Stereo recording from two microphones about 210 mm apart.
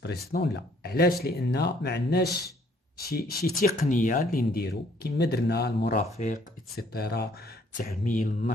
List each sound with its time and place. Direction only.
0.0 s speech: 50° left (ahead or behind)